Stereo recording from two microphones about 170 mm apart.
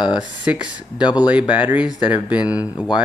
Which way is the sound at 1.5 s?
10° right (ahead or behind).